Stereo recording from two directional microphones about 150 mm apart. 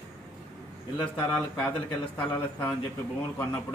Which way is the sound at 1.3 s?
5° left (ahead or behind).